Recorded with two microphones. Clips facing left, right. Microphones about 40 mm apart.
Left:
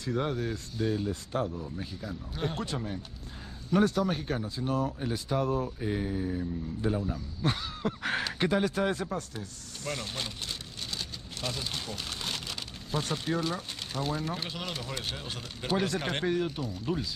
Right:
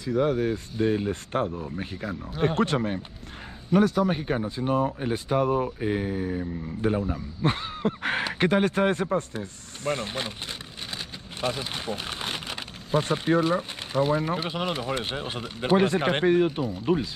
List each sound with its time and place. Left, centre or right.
0.0 s speech: centre
0.4 s speech: right
3.8 s speech: centre
4.5 s speech: right